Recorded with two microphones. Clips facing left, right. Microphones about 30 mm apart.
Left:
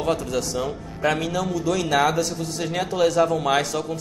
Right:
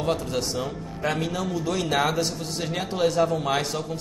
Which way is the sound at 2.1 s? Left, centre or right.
Right.